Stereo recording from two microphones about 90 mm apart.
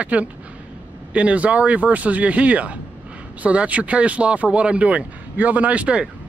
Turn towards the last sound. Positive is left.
turn(degrees=-15)  # may be behind; listen again after turning